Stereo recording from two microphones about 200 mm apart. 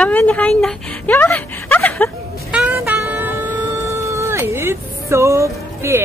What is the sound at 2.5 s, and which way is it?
Music, 5° right (ahead or behind).